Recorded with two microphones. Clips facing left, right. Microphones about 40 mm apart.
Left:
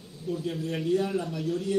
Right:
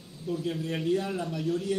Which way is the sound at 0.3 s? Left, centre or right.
Centre.